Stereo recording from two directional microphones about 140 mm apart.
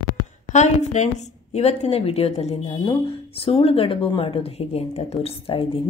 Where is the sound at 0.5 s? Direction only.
55° left (ahead or behind).